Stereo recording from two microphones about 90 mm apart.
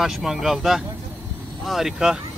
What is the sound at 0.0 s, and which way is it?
Speech, 5° right (ahead or behind).